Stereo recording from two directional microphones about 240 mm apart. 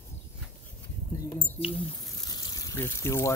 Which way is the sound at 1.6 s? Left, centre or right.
Left.